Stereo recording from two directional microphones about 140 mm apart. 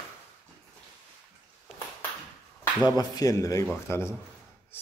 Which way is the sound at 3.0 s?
25° left (ahead or behind).